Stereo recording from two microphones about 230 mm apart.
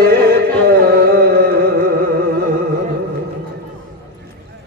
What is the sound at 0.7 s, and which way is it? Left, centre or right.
Carnatic music, right.